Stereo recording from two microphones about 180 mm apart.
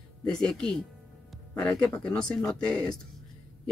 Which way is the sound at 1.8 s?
5° left (ahead or behind).